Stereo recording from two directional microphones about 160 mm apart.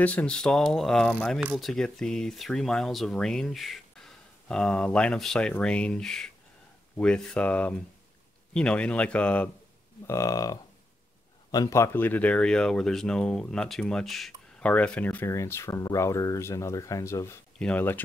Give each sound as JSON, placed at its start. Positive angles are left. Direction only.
{"t": 0.0, "sound": "speech", "side_deg": 10}
{"t": 10.0, "sound": "speech", "side_deg": 20}